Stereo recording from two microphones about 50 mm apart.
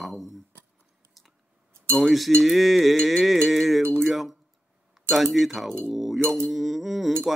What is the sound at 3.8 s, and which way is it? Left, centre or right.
Speech, right.